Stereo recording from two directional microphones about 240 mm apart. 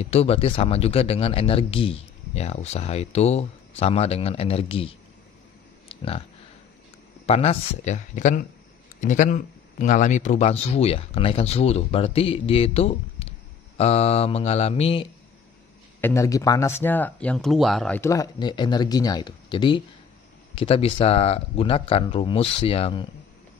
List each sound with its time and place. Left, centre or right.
0.0 s speech: left
5.9 s a sound: left
7.2 s speech: left
16.0 s speech: centre